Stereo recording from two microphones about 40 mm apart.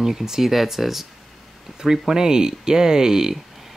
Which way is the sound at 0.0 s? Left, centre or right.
Centre.